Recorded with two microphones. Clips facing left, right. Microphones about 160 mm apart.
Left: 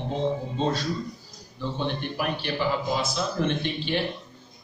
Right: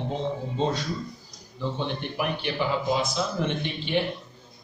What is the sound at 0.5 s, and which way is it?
A man's voice, 20° right (ahead or behind).